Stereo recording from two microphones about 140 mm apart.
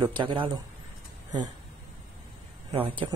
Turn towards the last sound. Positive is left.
turn(degrees=-40)  # may be behind; listen again after turning